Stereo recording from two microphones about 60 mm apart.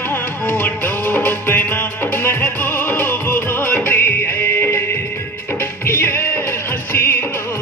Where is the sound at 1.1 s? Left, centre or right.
Left.